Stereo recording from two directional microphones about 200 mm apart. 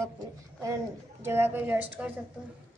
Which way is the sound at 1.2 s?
10° right (ahead or behind).